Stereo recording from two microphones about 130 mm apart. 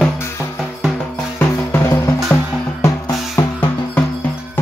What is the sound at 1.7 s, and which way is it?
Music, 20° left (ahead or behind).